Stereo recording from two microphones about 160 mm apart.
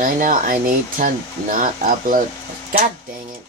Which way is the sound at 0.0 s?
55° right (ahead or behind).